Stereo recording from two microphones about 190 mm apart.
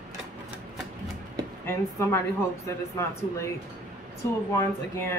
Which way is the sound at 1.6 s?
15° left (ahead or behind).